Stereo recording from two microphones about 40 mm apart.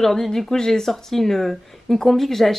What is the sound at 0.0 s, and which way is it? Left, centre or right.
Speech, centre.